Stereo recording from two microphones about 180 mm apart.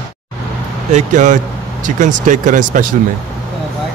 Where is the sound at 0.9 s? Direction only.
45° right (ahead or behind).